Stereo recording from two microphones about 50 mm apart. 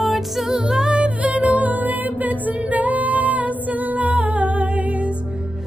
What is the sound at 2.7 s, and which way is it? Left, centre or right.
Music, right.